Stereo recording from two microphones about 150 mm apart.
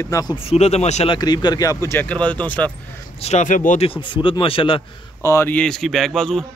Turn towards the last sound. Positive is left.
turn(degrees=0)  # may be behind; listen again after turning